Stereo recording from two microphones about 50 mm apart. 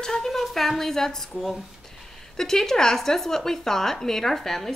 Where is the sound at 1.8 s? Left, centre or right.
Centre.